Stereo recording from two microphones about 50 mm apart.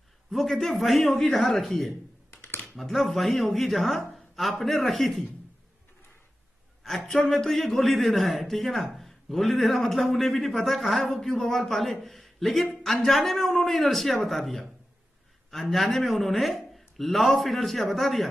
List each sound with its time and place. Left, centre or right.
0.3 s a man's voice: centre
7.1 s a man's voice: centre